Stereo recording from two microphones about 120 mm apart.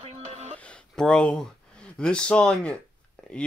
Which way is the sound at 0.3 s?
60° right (ahead or behind).